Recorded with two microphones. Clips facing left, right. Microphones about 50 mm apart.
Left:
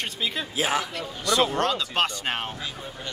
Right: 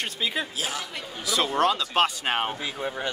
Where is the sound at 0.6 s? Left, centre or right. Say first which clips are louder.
Left 6 dB; left.